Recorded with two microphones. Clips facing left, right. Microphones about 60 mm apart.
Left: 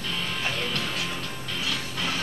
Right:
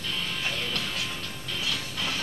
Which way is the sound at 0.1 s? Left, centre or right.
Left.